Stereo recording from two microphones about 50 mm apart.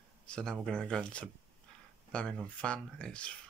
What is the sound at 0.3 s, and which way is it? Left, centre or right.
Speech, centre.